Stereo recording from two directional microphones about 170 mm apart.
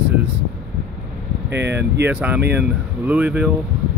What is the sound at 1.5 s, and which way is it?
Speech, 90° right.